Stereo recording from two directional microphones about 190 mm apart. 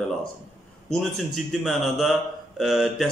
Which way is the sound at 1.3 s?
Centre (ahead or behind).